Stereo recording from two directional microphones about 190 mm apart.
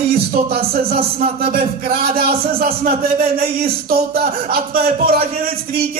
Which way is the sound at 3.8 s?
50° right (ahead or behind).